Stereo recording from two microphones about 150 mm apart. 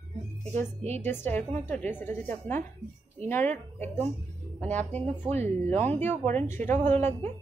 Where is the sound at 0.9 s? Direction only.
15° left (ahead or behind).